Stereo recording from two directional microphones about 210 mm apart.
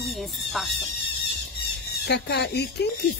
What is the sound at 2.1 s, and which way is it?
Speech, 55° left (ahead or behind).